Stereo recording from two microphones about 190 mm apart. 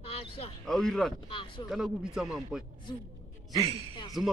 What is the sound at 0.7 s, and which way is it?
Speech, 5° left (ahead or behind).